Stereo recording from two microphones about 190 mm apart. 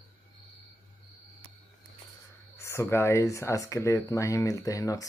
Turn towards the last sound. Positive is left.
turn(degrees=15)  # may be behind; listen again after turning